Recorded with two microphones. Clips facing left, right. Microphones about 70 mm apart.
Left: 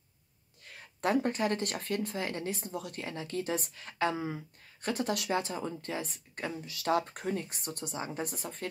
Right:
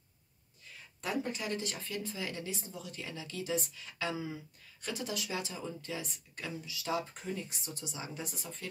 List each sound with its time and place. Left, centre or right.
0.7 s speech: left